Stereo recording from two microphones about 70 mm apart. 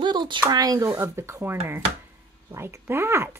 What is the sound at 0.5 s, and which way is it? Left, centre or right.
Speech, right.